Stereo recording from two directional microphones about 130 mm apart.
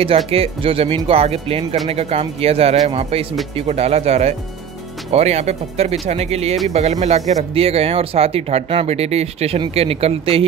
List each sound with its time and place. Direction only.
0.3 s speech: 45° right (ahead or behind)